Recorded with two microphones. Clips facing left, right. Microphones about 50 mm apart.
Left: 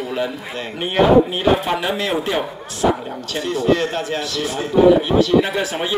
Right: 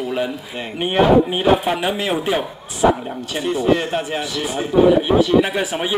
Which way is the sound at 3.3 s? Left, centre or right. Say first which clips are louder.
Even; centre.